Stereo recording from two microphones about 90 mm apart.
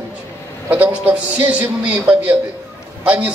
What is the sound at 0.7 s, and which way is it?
A man's voice, 20° right (ahead or behind).